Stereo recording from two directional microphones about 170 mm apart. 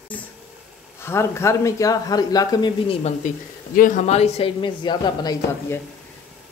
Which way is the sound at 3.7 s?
50° left (ahead or behind).